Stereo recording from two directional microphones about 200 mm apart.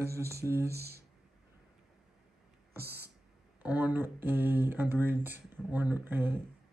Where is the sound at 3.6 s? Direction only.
10° right (ahead or behind).